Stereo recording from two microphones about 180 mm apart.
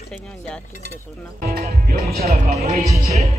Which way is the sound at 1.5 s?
55° right (ahead or behind).